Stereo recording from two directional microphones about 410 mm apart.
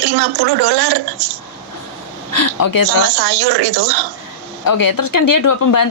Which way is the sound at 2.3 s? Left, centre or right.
Left.